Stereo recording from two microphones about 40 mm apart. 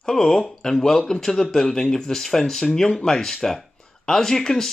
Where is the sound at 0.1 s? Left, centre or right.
Centre.